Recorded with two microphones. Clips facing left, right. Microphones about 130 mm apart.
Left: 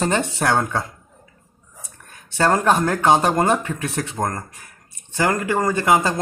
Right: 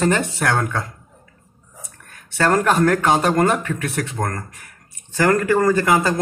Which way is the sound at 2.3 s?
20° left (ahead or behind).